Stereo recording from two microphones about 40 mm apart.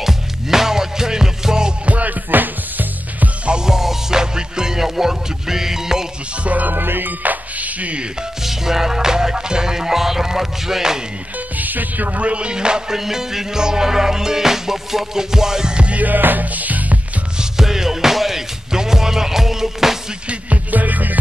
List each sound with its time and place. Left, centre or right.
0.0 s music: centre
1.9 s music: right
3.6 s music: centre
6.4 s music: right
6.8 s music: right
8.4 s music: centre
11.3 s music: right
16.0 s music: right
17.4 s music: centre
20.2 s music: right